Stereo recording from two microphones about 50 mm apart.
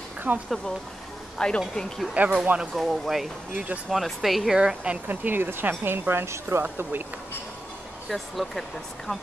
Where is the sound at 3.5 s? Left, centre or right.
Right.